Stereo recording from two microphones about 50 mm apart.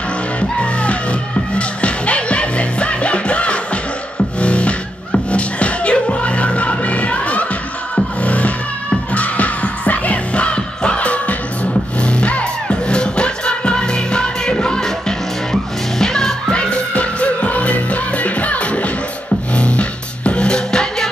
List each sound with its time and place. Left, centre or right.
0.4 s music: left